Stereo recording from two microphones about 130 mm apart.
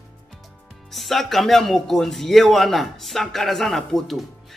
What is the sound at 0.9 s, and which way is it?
A man's voice, centre (ahead or behind).